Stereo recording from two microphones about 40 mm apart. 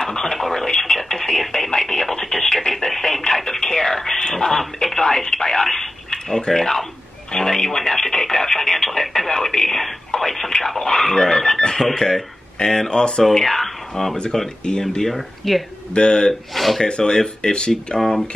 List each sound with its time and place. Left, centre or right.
0.0 s radio: centre
5.6 s telephone: centre
6.0 s a sound: centre
6.4 s speech: centre
7.3 s radio: centre
10.6 s dog: centre
11.6 s cash register: centre
13.3 s speech: centre
14.6 s speech: left
15.1 s speech: centre
15.9 s speech: left
16.5 s speech: centre
16.8 s speech: left